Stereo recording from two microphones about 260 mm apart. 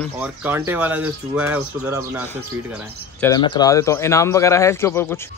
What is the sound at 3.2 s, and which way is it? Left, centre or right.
Speech, centre.